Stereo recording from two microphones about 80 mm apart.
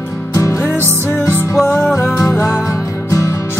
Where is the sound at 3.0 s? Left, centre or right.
Left.